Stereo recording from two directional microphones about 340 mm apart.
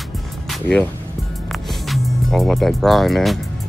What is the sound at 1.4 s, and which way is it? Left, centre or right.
Music, centre.